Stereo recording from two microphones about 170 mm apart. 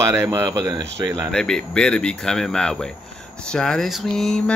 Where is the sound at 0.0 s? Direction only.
15° right (ahead or behind).